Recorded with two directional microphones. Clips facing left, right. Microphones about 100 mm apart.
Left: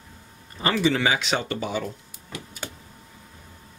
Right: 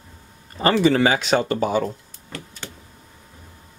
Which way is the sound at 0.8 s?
45° right (ahead or behind).